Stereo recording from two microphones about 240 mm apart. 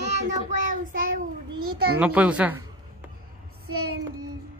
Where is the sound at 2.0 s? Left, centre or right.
Centre.